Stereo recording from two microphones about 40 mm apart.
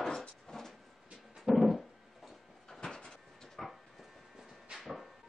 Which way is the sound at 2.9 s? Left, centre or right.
Centre.